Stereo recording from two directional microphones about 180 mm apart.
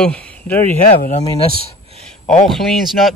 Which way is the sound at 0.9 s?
45° left (ahead or behind).